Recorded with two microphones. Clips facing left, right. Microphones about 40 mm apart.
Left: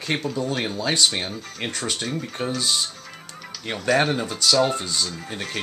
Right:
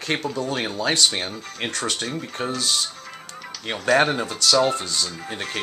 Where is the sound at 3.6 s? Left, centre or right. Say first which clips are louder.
Right 2 dB; centre.